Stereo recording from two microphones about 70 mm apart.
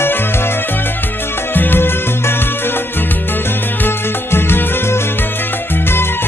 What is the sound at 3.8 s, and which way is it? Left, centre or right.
Music, left.